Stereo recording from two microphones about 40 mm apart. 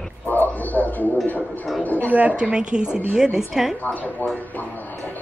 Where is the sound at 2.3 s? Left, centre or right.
Right.